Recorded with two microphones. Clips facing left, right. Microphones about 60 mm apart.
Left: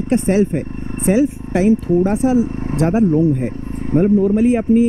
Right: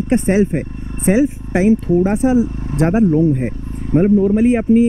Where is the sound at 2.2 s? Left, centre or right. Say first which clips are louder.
Right 1 dB; right.